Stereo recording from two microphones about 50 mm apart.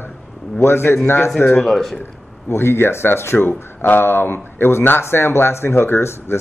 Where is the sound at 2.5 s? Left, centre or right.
Left.